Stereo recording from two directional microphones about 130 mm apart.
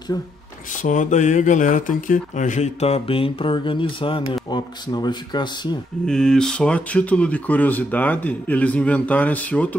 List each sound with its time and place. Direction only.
0.1 s speech: 25° left (ahead or behind)
0.8 s speech: 70° left (ahead or behind); by 5.8 s 35° left (ahead or behind)
6.0 s speech: 5° left (ahead or behind)